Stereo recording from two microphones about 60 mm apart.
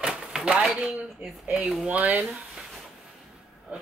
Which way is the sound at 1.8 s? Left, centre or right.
Right.